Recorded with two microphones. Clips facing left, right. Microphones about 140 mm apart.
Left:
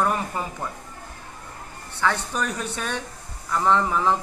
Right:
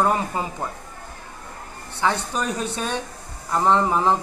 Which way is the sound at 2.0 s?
20° right (ahead or behind).